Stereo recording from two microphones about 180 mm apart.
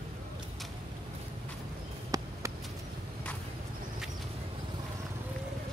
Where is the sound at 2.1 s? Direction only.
20° right (ahead or behind).